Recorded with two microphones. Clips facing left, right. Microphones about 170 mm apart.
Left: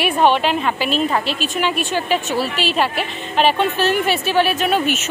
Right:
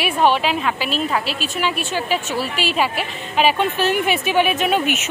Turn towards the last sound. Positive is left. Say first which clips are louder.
# left 1 dB
turn(degrees=-15)  # may be behind; listen again after turning